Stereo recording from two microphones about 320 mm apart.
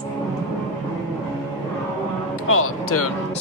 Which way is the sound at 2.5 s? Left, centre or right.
Left.